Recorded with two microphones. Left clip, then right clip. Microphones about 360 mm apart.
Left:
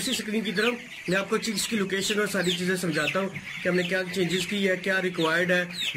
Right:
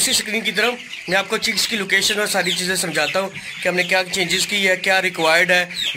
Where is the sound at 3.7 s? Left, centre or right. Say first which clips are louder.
Right 8 dB; right.